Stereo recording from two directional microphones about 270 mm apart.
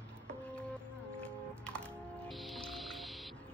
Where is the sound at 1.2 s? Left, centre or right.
Centre.